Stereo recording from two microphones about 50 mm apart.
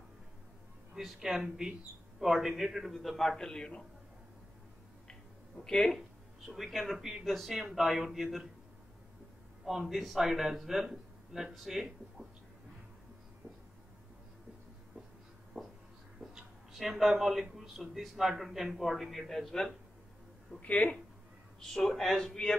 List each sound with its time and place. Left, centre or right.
0.9 s a man's voice: centre
5.6 s speech: centre
6.4 s a man's voice: centre
9.7 s a man's voice: centre
16.2 s a sound: centre
17.2 s a man's voice: centre
20.6 s speech: left
21.5 s speech: centre